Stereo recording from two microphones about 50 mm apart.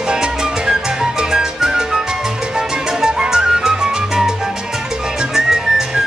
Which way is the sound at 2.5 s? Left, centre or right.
Centre.